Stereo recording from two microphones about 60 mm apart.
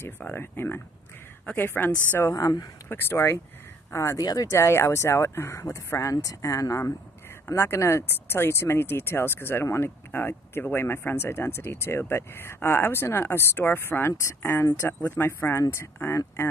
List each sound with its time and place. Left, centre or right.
0.0 s speech: left
2.3 s speech: left
2.9 s speech: left
4.2 s speech: left
4.6 s speech: left
7.4 s speech: left
15.0 s speech: left